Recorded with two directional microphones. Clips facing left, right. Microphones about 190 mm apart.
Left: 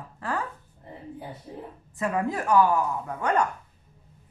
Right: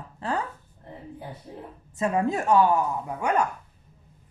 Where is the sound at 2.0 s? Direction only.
25° right (ahead or behind).